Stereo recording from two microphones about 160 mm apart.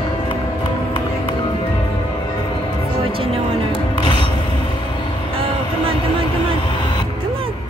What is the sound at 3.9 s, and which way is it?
Music, 30° left (ahead or behind).